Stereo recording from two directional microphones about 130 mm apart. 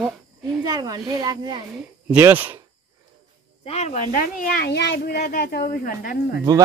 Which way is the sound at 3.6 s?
60° left (ahead or behind).